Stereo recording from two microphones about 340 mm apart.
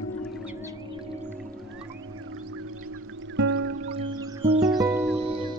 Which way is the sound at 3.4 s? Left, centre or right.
Right.